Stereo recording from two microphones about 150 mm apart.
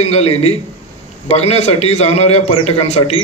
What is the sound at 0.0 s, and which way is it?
A man's voice, 45° left (ahead or behind).